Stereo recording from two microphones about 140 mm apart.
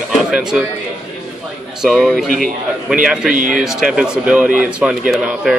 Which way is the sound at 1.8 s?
5° right (ahead or behind).